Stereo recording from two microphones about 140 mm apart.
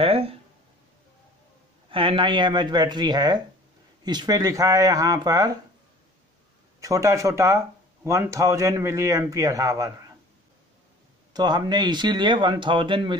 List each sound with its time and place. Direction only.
0.0 s a sound: 45° right (ahead or behind)
1.9 s speech: 40° right (ahead or behind)
6.8 s speech: 25° right (ahead or behind)
11.3 s speech: 30° right (ahead or behind)